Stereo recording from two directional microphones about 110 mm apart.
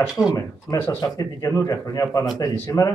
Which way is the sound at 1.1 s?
30° left (ahead or behind).